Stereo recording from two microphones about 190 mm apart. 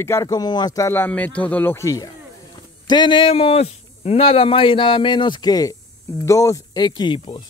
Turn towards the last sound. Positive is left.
turn(degrees=25)  # may be behind; listen again after turning